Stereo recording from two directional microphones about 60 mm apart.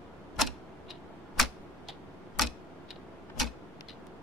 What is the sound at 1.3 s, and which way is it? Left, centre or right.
Typewriter, centre.